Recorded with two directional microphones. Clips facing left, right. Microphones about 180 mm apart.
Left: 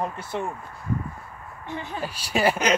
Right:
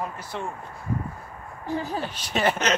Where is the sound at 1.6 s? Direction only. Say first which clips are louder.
Right 5 dB; 35° right (ahead or behind).